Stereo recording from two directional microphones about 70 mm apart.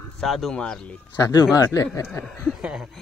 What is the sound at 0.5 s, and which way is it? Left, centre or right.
Speech, centre.